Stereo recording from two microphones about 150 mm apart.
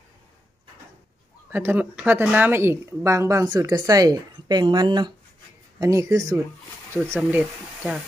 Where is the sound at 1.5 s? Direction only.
15° right (ahead or behind).